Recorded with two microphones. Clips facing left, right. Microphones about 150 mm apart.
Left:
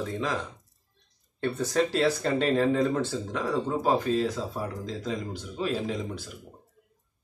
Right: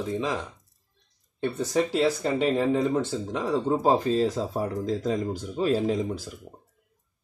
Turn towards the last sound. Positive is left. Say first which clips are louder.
# right 6 dB
turn(degrees=-35)  # may be behind; listen again after turning